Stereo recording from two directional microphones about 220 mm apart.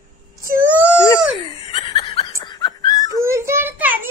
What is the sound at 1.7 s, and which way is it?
Laughter, 25° left (ahead or behind).